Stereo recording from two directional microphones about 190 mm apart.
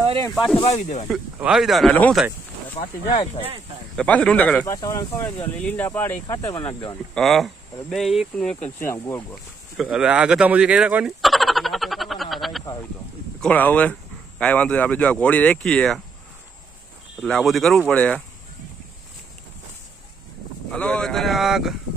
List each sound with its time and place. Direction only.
0.0 s snake: 25° right (ahead or behind)
0.6 s speech: 35° left (ahead or behind)
1.1 s speech: 5° right (ahead or behind)
3.9 s speech: 5° left (ahead or behind)
4.7 s speech: 20° left (ahead or behind)
7.2 s speech: centre (ahead or behind)
9.8 s a sound: centre (ahead or behind)
13.4 s speech: 10° left (ahead or behind)
17.2 s speech: centre (ahead or behind)
20.7 s speech: 5° left (ahead or behind)